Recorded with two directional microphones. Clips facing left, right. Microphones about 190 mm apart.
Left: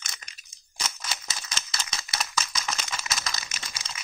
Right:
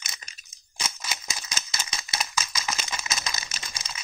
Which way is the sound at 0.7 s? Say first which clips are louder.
Even; 10° right (ahead or behind).